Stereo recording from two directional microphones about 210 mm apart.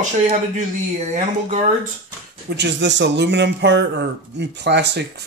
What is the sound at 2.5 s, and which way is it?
Speech, 55° right (ahead or behind).